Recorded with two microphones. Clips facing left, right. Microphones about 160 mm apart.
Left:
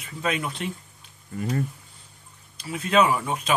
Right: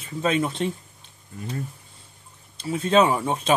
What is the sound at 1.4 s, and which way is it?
Speech, 70° left (ahead or behind).